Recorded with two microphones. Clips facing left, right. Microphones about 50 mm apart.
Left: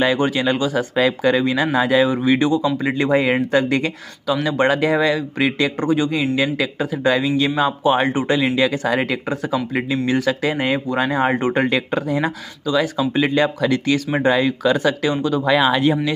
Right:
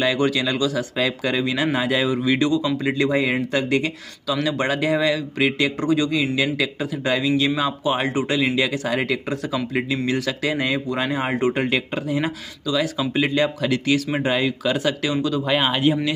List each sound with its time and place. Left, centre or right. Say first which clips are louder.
0.0 s speech: left 3 dB; left
0.9 s speech: left 6 dB; left
5.8 s a man's voice: left 2 dB; left
6.1 s speech: left 2 dB; left
15.4 s speech: left 6 dB; left